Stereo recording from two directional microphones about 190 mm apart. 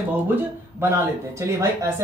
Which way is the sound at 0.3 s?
10° right (ahead or behind).